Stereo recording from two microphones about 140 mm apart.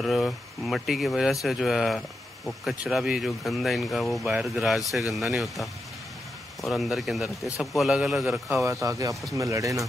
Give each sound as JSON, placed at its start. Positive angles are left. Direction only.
{"t": 0.0, "sound": "speech", "side_deg": 0}
{"t": 8.8, "sound": "speech", "side_deg": -25}